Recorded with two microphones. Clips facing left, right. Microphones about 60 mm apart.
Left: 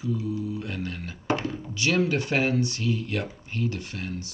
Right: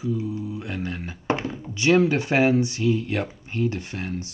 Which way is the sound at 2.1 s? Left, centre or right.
Right.